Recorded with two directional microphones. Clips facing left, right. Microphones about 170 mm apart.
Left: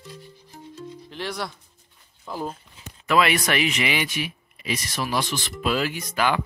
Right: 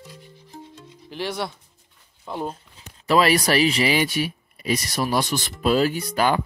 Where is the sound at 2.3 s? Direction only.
5° right (ahead or behind).